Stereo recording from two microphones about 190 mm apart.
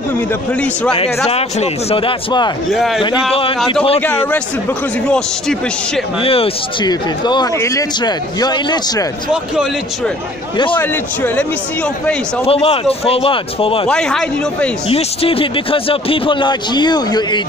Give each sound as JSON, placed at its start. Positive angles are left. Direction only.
{"t": 0.9, "sound": "a man's voice", "side_deg": 30}
{"t": 2.7, "sound": "speech", "side_deg": 0}
{"t": 3.3, "sound": "speech", "side_deg": 30}
{"t": 4.0, "sound": "speech", "side_deg": 10}
{"t": 6.2, "sound": "speech", "side_deg": 30}
{"t": 10.8, "sound": "speech", "side_deg": 10}
{"t": 12.4, "sound": "speech", "side_deg": 30}
{"t": 13.8, "sound": "speech", "side_deg": 5}
{"t": 14.9, "sound": "speech", "side_deg": 30}